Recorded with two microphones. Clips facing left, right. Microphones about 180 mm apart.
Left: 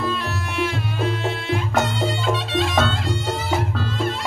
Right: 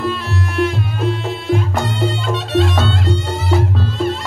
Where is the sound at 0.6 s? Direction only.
Centre (ahead or behind).